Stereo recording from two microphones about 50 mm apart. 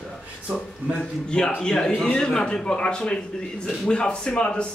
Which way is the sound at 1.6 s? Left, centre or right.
Centre.